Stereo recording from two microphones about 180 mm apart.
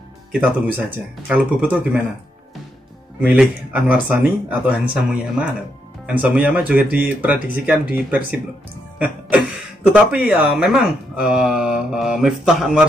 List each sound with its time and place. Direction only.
0.3 s speech: 10° right (ahead or behind)
3.2 s speech: 10° right (ahead or behind)
8.9 s music: 5° right (ahead or behind)
9.9 s speech: 5° right (ahead or behind)